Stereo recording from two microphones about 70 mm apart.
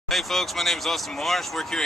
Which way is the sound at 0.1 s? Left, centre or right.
Centre.